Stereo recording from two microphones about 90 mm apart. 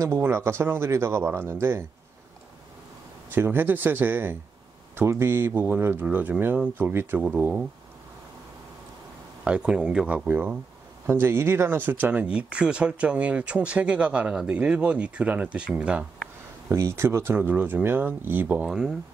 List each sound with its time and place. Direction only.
0.0 s speech: 25° right (ahead or behind)
3.3 s speech: 20° right (ahead or behind)
9.4 s speech: 10° right (ahead or behind)
16.6 s speech: 30° right (ahead or behind)
18.7 s speech: 5° right (ahead or behind)